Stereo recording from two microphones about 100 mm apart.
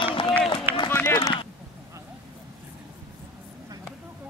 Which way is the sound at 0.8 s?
25° left (ahead or behind).